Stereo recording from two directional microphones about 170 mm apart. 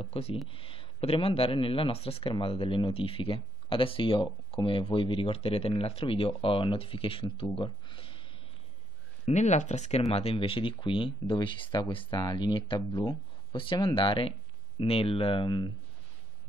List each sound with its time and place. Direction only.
0.0 s speech: 35° left (ahead or behind)
9.2 s speech: 45° left (ahead or behind); by 15.7 s 30° left (ahead or behind)